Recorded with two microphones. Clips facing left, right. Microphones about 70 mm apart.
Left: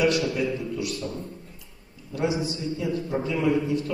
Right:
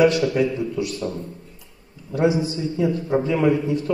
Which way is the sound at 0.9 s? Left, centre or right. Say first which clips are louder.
Right 4 dB; right.